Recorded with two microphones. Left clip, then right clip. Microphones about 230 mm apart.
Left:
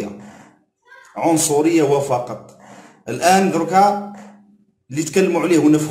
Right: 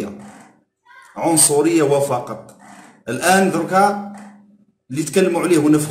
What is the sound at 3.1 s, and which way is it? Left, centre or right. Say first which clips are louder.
Speech: left 1 dB; centre.